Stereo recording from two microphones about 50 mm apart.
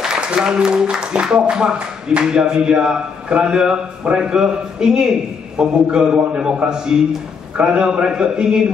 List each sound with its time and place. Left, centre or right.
0.0 s speech: centre